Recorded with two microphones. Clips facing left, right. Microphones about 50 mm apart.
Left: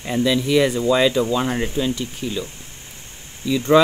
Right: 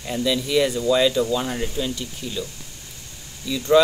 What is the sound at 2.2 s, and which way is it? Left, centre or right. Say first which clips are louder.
Speech: left 6 dB; left.